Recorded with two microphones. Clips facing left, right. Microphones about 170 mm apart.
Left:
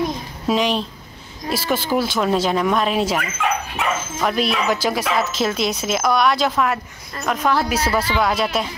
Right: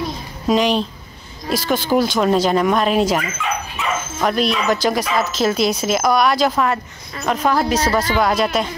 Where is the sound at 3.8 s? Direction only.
65° left (ahead or behind).